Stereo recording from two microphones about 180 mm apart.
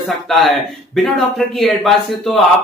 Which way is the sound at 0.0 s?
Centre (ahead or behind).